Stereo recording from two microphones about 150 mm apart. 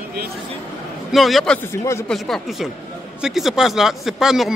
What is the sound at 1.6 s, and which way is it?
Speech, 15° left (ahead or behind).